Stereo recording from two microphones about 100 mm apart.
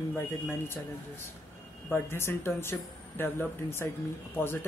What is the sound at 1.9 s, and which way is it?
Speech, 25° left (ahead or behind).